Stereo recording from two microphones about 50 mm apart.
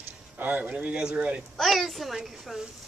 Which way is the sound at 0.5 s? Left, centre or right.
Right.